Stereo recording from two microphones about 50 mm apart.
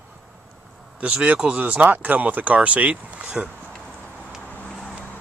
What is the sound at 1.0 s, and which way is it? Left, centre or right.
Speech, right.